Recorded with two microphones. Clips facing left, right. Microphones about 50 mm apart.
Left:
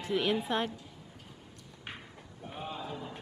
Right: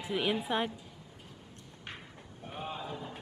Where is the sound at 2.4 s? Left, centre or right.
Centre.